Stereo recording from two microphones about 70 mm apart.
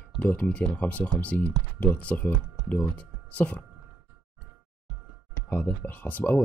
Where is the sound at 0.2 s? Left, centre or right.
Left.